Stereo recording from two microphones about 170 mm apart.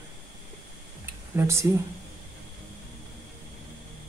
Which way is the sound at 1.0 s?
15° right (ahead or behind).